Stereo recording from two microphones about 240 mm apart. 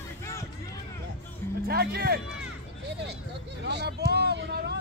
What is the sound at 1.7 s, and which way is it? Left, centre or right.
Speech, right.